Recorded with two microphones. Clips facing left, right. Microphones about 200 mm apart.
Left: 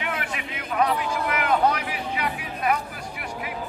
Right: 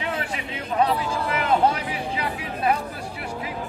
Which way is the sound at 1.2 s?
30° right (ahead or behind).